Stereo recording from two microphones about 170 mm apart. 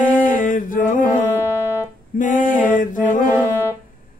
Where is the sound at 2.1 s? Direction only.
50° left (ahead or behind).